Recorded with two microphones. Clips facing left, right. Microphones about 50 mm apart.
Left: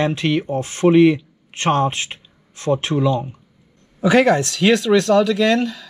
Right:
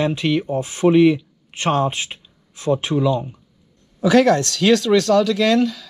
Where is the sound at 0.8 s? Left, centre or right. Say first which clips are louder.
Left 1 dB; centre.